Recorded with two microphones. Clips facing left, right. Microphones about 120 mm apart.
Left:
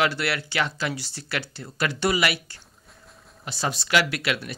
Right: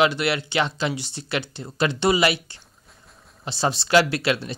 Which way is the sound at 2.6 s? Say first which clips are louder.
Left 1 dB; centre (ahead or behind).